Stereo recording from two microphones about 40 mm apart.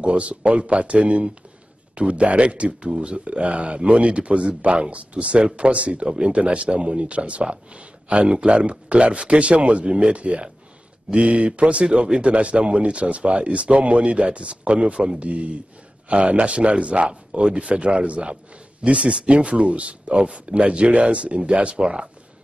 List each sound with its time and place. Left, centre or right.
0.0 s speech: right